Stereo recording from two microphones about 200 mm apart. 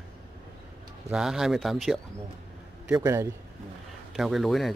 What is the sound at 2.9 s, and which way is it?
Speech, 15° right (ahead or behind).